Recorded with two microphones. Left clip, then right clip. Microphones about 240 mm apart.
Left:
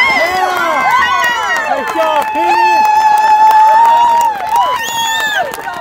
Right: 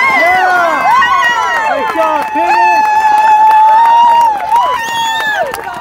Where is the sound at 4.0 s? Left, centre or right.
Right.